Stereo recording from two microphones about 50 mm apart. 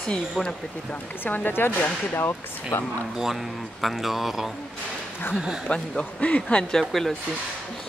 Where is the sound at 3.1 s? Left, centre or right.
Centre.